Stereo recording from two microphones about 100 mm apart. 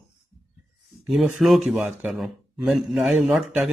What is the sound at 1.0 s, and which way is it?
Speech, centre (ahead or behind).